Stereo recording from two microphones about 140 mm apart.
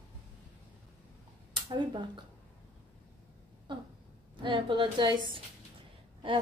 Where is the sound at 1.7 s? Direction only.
35° right (ahead or behind).